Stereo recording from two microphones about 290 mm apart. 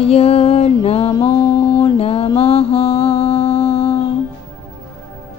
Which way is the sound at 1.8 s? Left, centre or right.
Centre.